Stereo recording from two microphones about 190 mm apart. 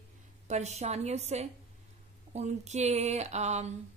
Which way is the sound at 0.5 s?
35° right (ahead or behind).